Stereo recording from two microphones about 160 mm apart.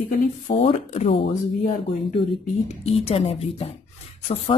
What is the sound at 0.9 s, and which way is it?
Speech, 40° left (ahead or behind).